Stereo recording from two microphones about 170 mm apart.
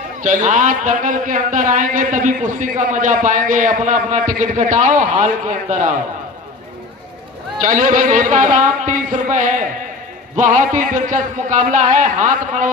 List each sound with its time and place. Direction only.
0.2 s a man's voice: 45° right (ahead or behind)
7.6 s a man's voice: 50° right (ahead or behind)